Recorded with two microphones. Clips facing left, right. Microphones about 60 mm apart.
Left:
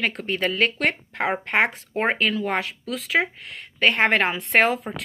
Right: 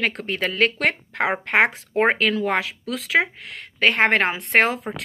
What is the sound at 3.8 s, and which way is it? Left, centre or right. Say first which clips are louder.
Speech: right 1 dB; right.